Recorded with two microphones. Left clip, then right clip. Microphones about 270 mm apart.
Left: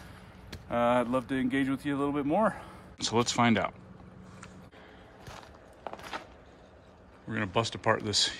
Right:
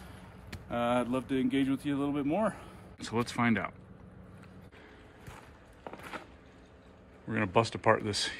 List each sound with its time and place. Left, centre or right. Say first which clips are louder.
0.5 s speech: left 4 dB; centre
5.9 s a sound: left 4 dB; centre
7.2 s speech: right 2 dB; centre